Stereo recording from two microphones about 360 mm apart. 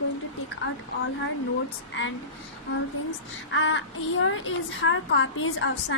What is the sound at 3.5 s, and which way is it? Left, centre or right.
A woman's voice, left.